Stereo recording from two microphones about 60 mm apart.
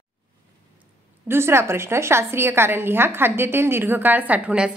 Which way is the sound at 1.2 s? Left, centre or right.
Right.